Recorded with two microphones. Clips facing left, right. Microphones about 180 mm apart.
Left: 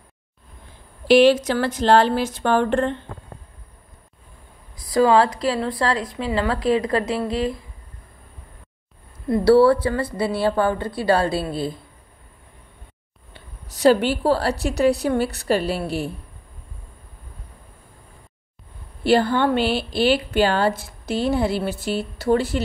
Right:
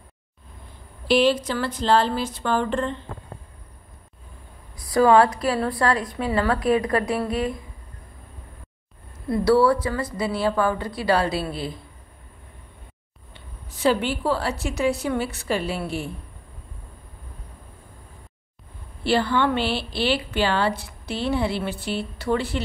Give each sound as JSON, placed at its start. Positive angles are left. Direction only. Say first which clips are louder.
{"t": 1.0, "sound": "speech", "louder": "left 5 dB", "side_deg": 80}
{"t": 4.8, "sound": "a woman's voice", "louder": "even", "side_deg": 25}
{"t": 9.4, "sound": "a woman's voice", "louder": "left 4 dB", "side_deg": 30}
{"t": 13.7, "sound": "a woman's voice", "louder": "left 5 dB", "side_deg": 40}
{"t": 19.0, "sound": "a woman's voice", "louder": "left 3 dB", "side_deg": 45}